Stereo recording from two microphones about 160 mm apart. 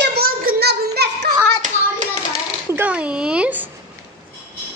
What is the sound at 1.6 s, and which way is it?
Hands, 50° right (ahead or behind).